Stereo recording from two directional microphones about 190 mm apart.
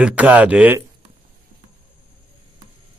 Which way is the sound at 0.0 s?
10° right (ahead or behind).